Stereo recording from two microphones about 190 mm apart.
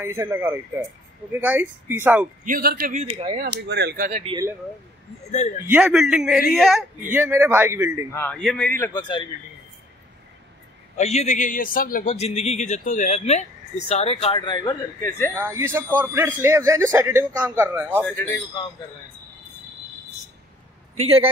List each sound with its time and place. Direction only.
0.0 s speech: 10° right (ahead or behind)
2.4 s a man's voice: 50° right (ahead or behind)
3.1 s speech: 30° right (ahead or behind)
3.3 s speech: 60° right (ahead or behind)
4.2 s speech: 25° right (ahead or behind)
5.7 s a man's voice: 5° right (ahead or behind)
7.1 s speech: 10° right (ahead or behind)
8.1 s a man's voice: 10° left (ahead or behind)
11.0 s a man's voice: 35° left (ahead or behind); by 15.3 s 10° left (ahead or behind)
15.3 s speech: 15° right (ahead or behind)
18.0 s a man's voice: 10° left (ahead or behind)
20.9 s a man's voice: 30° right (ahead or behind)